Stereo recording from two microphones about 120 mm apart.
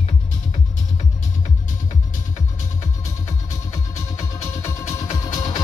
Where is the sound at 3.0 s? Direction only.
30° left (ahead or behind).